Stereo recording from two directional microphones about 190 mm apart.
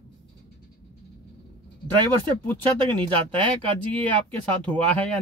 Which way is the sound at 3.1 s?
10° left (ahead or behind).